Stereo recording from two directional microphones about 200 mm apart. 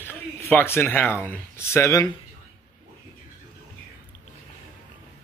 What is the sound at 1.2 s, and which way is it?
Speech, 10° left (ahead or behind).